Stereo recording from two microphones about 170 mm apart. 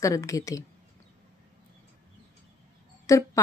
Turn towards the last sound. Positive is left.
turn(degrees=20)  # may be behind; listen again after turning